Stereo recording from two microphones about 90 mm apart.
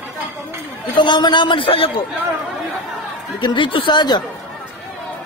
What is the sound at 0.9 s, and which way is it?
A man's voice, 60° left (ahead or behind).